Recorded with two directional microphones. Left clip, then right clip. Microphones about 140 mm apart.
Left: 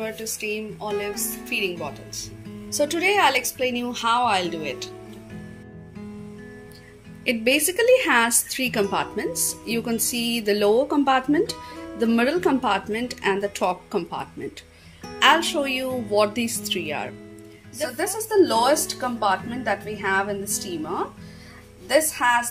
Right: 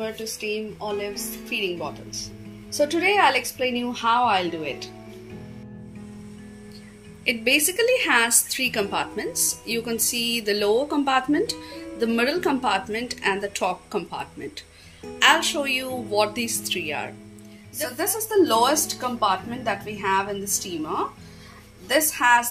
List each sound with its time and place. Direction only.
0.0 s a woman's voice: 5° left (ahead or behind)
7.2 s a woman's voice: 45° left (ahead or behind)
17.9 s a woman's voice: 10° left (ahead or behind)